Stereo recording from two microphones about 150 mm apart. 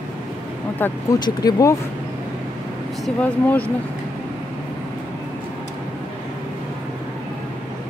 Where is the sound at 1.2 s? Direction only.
25° left (ahead or behind).